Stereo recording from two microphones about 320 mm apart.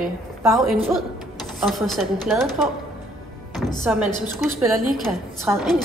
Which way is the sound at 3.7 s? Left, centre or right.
Centre.